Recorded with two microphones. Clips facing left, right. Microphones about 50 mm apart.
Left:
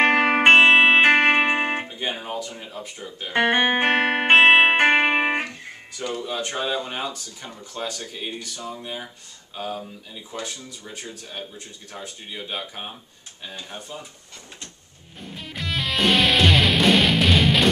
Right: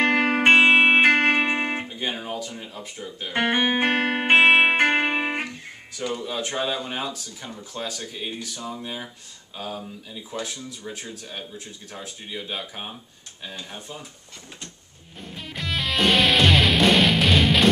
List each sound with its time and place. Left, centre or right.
0.1 s music: centre
0.7 s music: left
1.0 s music: left; by 2.5 s centre
2.5 s speech: centre
3.4 s music: left
5.4 s speech: centre
15.3 s music: centre